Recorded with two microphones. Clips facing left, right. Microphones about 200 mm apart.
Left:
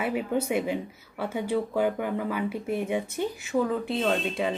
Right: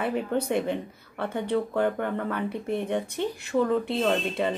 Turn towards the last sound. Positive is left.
turn(degrees=0)  # may be behind; listen again after turning